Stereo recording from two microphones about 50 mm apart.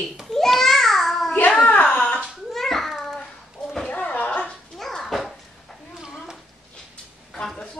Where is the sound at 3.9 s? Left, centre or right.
Left.